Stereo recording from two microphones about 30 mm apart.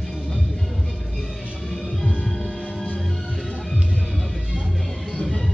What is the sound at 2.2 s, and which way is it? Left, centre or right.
Music, centre.